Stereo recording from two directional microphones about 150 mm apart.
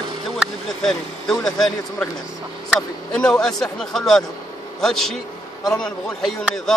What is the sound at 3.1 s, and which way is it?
Speech, 5° left (ahead or behind).